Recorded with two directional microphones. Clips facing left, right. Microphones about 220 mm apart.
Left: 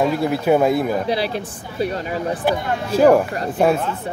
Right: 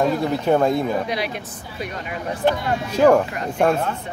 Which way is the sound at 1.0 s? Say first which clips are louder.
Left 4 dB; 30° left (ahead or behind).